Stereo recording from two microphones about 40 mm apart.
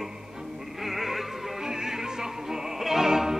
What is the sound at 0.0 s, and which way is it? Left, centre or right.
Music, centre.